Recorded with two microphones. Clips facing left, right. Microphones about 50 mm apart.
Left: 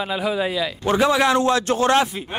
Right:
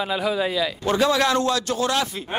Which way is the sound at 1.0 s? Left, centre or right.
Centre.